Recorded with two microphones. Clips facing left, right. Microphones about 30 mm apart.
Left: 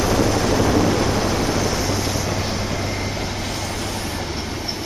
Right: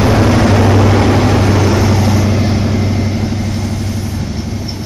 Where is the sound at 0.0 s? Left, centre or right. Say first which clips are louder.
Right 7 dB; right.